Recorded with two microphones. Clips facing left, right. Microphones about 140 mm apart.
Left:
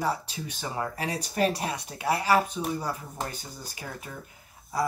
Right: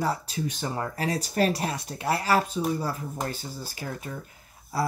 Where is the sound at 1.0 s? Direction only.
35° right (ahead or behind).